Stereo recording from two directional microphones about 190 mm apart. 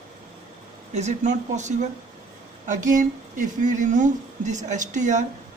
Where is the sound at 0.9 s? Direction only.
40° right (ahead or behind).